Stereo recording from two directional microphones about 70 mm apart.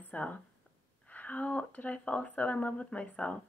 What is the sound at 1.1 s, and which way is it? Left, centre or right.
Speech, left.